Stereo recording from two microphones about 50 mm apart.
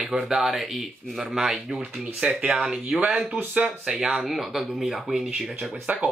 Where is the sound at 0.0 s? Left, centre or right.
Centre.